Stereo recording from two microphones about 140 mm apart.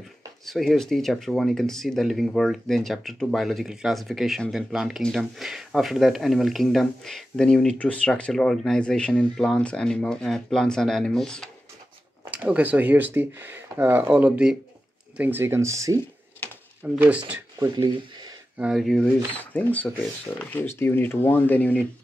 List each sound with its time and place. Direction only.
0.5 s speech: centre (ahead or behind)
12.3 s speech: 10° right (ahead or behind)
16.8 s speech: 10° right (ahead or behind)
17.6 s speech: 25° right (ahead or behind)
18.6 s speech: 5° right (ahead or behind)